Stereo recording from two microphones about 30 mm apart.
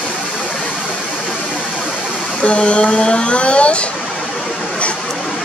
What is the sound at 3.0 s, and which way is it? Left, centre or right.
Speech, left.